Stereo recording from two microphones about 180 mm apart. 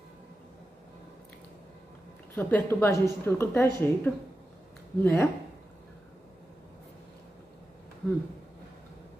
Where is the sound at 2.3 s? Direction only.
10° left (ahead or behind).